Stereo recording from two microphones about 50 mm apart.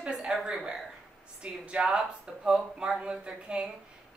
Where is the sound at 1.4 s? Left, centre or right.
Right.